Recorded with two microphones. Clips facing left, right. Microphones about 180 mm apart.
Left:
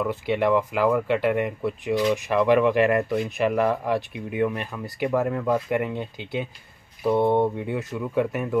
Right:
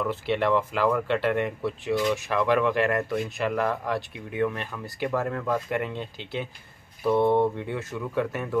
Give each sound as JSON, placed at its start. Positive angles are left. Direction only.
{"t": 0.0, "sound": "speech", "side_deg": 15}